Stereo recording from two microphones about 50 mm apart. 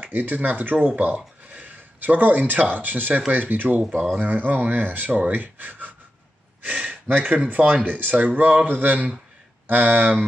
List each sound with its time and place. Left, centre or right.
0.0 s speech: right
6.6 s a sound: right
7.3 s speech: right